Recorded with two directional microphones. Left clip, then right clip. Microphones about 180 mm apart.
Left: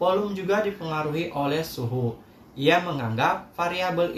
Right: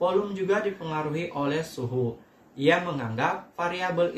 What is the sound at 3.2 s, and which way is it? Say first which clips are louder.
Speech: left 4 dB; 10° right (ahead or behind).